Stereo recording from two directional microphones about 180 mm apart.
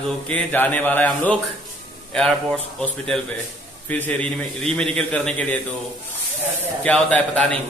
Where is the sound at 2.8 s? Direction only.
5° left (ahead or behind).